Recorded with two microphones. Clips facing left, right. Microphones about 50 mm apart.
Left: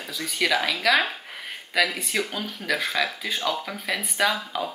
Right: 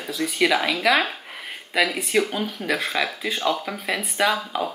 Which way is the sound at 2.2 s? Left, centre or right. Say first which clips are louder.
Right 4 dB; right.